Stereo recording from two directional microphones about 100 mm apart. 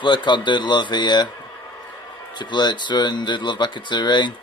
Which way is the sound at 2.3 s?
50° left (ahead or behind).